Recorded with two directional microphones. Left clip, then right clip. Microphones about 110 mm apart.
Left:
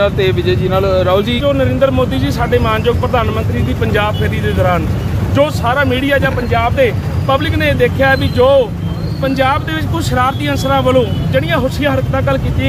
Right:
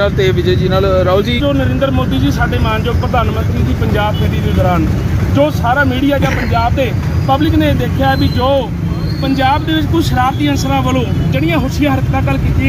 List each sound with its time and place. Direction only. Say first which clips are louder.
0.0 s speech: even; 30° left (ahead or behind)
1.4 s speech: left 2 dB; 40° left (ahead or behind)
5.3 s speech: even; 40° left (ahead or behind)